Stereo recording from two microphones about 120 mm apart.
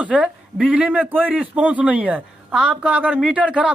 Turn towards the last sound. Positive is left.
turn(degrees=-10)  # may be behind; listen again after turning